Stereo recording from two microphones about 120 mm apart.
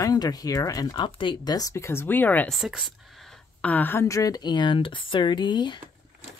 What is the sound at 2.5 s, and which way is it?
Speech, 5° right (ahead or behind).